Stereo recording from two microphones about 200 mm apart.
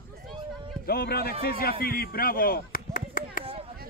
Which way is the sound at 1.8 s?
50° left (ahead or behind).